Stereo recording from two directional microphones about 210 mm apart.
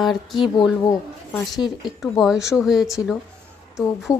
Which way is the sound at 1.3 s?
Centre (ahead or behind).